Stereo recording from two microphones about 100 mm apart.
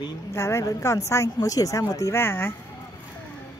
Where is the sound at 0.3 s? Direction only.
30° left (ahead or behind).